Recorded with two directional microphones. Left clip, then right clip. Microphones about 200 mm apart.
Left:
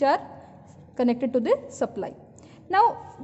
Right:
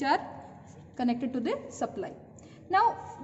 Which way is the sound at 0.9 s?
50° left (ahead or behind).